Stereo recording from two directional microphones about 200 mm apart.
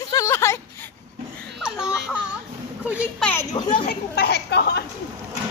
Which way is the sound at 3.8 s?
55° left (ahead or behind).